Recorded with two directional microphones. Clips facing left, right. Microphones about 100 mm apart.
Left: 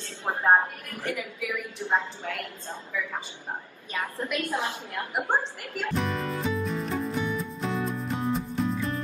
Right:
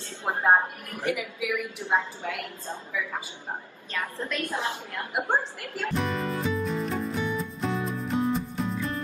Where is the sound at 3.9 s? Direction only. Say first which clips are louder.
Even; 20° left (ahead or behind).